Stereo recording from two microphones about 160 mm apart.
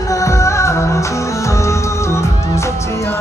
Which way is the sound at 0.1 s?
20° left (ahead or behind).